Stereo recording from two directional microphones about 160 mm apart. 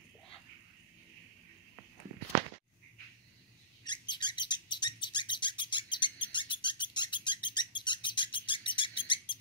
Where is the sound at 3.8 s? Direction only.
30° left (ahead or behind).